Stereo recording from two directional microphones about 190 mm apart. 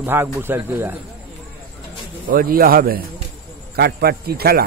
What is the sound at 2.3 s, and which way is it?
A man's voice, 50° right (ahead or behind).